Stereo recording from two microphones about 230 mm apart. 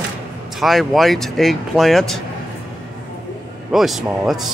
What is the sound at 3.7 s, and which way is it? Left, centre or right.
Speech, centre.